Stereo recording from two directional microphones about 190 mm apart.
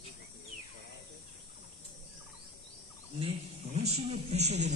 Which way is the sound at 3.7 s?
35° right (ahead or behind).